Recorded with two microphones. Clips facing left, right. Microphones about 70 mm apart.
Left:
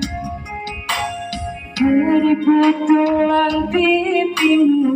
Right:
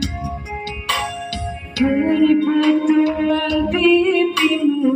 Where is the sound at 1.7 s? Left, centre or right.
Centre.